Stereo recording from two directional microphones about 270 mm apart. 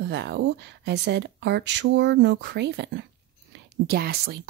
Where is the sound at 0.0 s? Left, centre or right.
Right.